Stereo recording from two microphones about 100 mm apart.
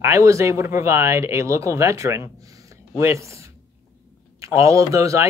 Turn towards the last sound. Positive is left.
turn(degrees=-30)  # may be behind; listen again after turning